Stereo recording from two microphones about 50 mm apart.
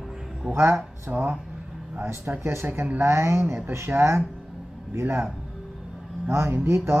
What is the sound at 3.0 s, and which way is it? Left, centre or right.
Speech, right.